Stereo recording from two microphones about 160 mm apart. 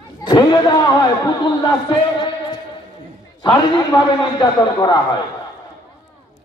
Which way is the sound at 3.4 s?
25° left (ahead or behind).